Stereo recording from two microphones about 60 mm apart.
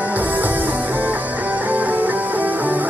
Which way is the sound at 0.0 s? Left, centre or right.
Right.